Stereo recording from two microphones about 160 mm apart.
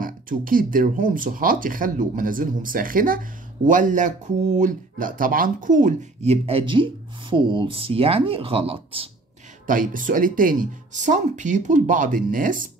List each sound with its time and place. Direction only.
0.0 s speech: 60° right (ahead or behind); by 9.1 s 35° right (ahead or behind)
9.7 s speech: 55° right (ahead or behind)